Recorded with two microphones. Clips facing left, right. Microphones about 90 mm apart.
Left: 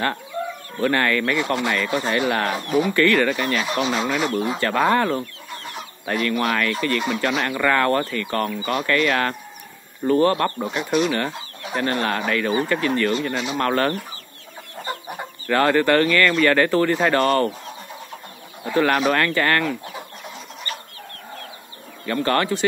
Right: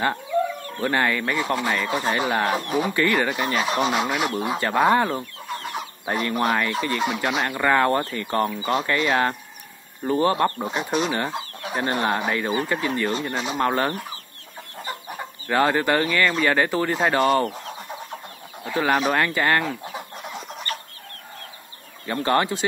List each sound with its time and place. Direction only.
0.7 s speech: 15° right (ahead or behind)
10.7 s speech: 25° right (ahead or behind)
13.6 s speech: 15° right (ahead or behind)
15.4 s speech: 15° right (ahead or behind)
18.8 s speech: 5° right (ahead or behind)
19.1 s speech: 15° right (ahead or behind)
22.0 s speech: 20° right (ahead or behind)